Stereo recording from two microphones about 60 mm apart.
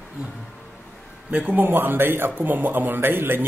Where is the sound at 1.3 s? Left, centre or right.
Right.